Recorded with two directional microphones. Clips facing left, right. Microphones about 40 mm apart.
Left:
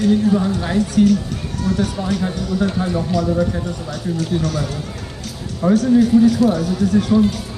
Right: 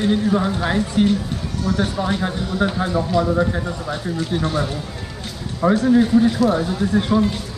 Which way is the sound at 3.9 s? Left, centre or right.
Right.